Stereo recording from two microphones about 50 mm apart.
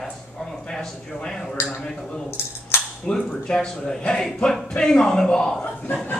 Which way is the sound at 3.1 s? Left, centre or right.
Centre.